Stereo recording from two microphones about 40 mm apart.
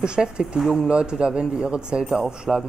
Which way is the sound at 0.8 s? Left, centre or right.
Right.